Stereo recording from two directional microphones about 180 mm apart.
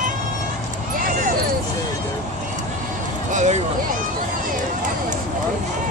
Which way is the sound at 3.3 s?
40° right (ahead or behind).